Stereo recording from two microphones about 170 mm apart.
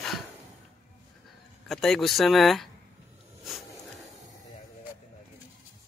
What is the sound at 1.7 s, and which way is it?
Speech, centre (ahead or behind).